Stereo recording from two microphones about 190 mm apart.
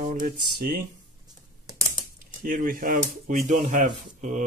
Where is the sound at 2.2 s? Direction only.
45° right (ahead or behind).